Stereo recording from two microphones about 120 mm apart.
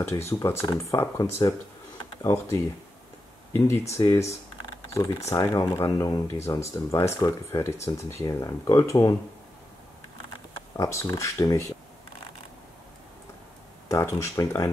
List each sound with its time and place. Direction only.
0.1 s speech: 20° left (ahead or behind)
5.3 s speech: 25° left (ahead or behind)
10.8 s speech: 25° left (ahead or behind)
13.8 s speech: 25° left (ahead or behind)